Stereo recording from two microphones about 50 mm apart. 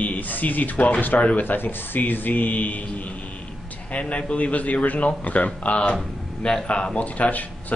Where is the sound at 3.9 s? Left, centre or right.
Left.